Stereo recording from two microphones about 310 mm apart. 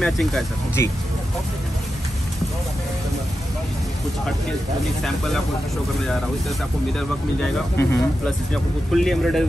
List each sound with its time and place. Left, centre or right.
0.0 s speech: centre
7.5 s speech: centre